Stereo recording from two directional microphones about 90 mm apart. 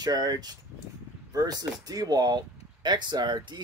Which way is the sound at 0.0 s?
45° right (ahead or behind).